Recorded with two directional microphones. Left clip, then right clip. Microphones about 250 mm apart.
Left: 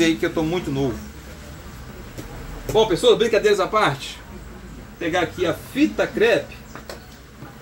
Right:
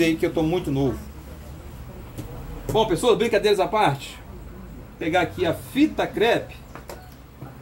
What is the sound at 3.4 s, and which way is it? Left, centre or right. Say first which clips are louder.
Speech: left 2 dB; centre.